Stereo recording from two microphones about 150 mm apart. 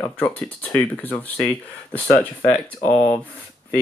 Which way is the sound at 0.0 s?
10° left (ahead or behind).